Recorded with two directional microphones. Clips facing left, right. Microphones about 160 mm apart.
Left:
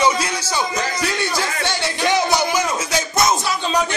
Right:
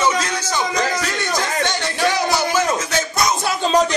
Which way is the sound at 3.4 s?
45° right (ahead or behind).